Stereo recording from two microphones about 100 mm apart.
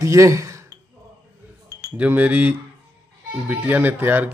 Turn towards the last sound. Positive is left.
turn(degrees=-20)  # may be behind; listen again after turning